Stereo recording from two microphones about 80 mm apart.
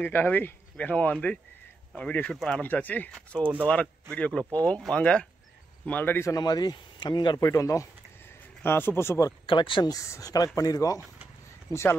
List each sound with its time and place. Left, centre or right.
0.0 s speech: left; by 2.6 s centre
2.6 s speech: left
6.3 s speech: left
7.4 s speech: left
8.6 s speech: left
9.5 s speech: left
9.8 s speech: left